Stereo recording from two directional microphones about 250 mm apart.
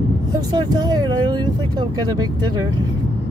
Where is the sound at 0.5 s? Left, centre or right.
Centre.